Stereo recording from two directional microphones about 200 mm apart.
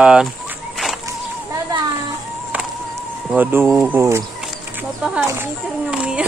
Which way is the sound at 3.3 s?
10° right (ahead or behind).